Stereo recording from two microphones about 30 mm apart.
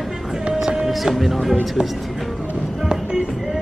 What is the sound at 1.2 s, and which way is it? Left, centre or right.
Speech, centre.